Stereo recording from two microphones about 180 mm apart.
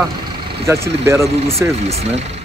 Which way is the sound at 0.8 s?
15° right (ahead or behind).